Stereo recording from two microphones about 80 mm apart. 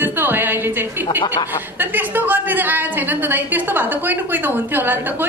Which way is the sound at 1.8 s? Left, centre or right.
Right.